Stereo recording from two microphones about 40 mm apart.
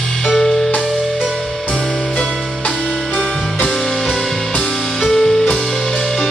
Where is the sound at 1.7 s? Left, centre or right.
Left.